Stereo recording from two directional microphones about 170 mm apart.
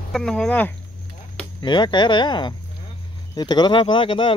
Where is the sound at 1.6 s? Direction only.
25° left (ahead or behind).